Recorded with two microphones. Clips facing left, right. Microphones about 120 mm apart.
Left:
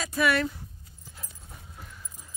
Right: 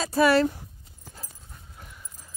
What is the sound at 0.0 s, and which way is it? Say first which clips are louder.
Speech: right 6 dB; 35° right (ahead or behind).